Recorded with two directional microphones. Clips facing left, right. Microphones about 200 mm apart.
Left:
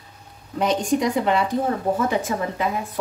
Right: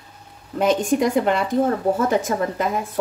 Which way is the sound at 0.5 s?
50° right (ahead or behind).